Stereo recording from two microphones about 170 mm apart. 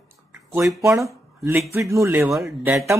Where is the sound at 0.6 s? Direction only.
20° right (ahead or behind).